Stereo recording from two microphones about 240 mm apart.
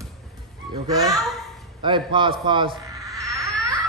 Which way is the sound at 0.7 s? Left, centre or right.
Centre.